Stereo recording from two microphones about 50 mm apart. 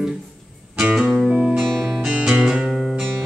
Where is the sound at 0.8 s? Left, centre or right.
Centre.